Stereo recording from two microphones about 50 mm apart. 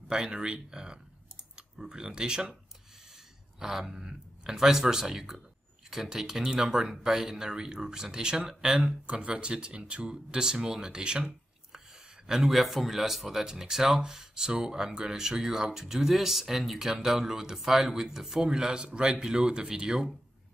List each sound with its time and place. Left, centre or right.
0.3 s speech: centre
3.5 s speech: centre